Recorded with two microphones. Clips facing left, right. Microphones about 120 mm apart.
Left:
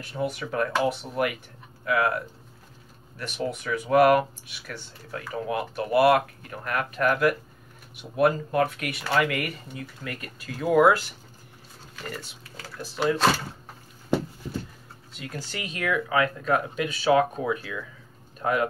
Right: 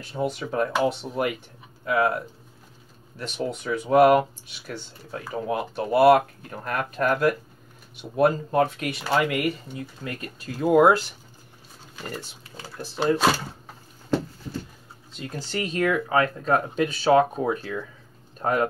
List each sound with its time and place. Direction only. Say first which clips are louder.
0.1 s speech: right 2 dB; 25° right (ahead or behind)
11.9 s a sound: right 2 dB; 25° right (ahead or behind)
15.1 s speech: right 5 dB; 25° right (ahead or behind)